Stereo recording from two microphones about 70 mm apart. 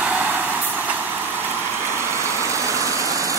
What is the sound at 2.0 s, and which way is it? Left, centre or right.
Vehicle, right.